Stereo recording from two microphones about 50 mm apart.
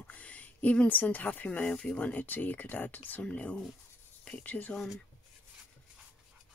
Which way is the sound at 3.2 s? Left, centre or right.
Left.